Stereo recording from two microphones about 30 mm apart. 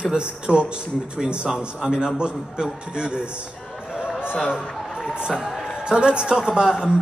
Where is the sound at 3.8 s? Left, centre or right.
Right.